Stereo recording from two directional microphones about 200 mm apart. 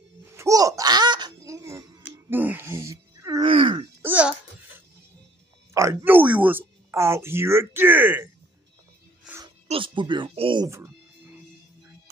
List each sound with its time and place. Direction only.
0.2 s a sound: 15° right (ahead or behind)
3.4 s groan: 25° right (ahead or behind)
4.0 s babbling: 5° right (ahead or behind)
5.7 s speech: 15° right (ahead or behind)
9.7 s speech: 25° right (ahead or behind)